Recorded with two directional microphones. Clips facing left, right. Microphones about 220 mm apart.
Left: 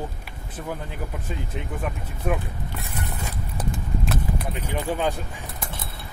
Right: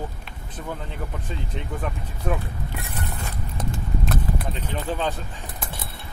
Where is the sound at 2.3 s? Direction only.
10° left (ahead or behind).